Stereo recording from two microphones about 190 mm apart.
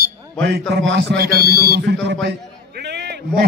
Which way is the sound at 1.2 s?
55° right (ahead or behind).